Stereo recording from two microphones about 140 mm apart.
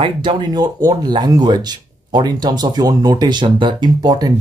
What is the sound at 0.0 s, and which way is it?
Speech, 35° right (ahead or behind).